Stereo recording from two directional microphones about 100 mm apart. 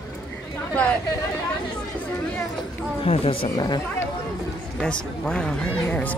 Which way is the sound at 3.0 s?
75° left (ahead or behind).